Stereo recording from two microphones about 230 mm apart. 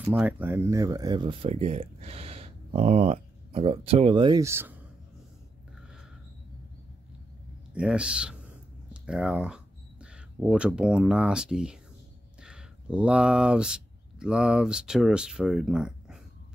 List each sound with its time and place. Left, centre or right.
0.1 s speech: centre
7.7 s speech: centre